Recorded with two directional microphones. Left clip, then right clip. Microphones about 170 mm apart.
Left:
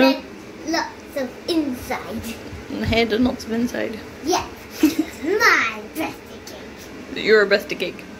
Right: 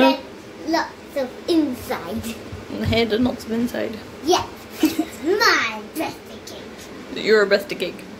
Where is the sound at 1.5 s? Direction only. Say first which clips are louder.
Right 3 dB; 30° right (ahead or behind).